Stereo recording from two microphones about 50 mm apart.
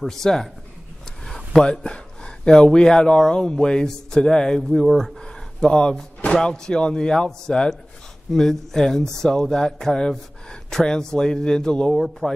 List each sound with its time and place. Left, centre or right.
0.0 s speech: centre
1.2 s a sound: centre
1.6 s speech: centre
4.8 s speech: centre
5.2 s a sound: centre
6.2 s speech: centre